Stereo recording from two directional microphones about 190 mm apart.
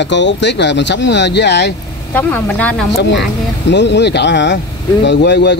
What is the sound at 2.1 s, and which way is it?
Speech, 10° left (ahead or behind).